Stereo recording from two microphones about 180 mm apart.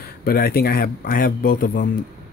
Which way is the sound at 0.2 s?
60° left (ahead or behind).